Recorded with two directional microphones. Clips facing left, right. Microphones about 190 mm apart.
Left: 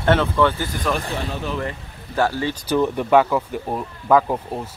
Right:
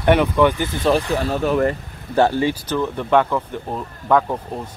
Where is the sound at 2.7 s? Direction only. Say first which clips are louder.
Left 2 dB; 10° left (ahead or behind).